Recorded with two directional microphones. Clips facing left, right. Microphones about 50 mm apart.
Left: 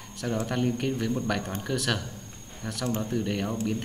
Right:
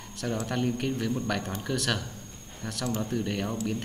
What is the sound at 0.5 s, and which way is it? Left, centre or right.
Speech, centre.